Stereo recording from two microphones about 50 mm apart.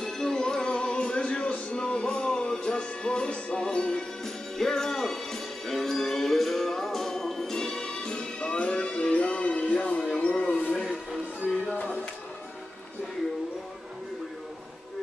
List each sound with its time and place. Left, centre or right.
0.0 s music: centre